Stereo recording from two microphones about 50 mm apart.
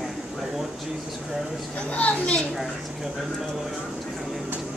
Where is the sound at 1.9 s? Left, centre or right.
Left.